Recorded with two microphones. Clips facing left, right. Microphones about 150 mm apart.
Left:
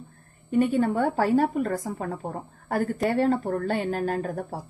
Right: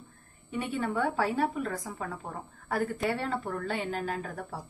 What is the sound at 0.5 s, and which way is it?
A woman's voice, 45° left (ahead or behind).